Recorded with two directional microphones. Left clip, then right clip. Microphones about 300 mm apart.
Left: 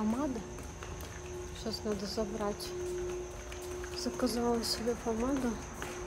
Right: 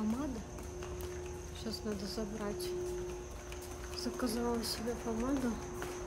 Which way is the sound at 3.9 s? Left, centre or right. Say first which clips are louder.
Left 3 dB; centre.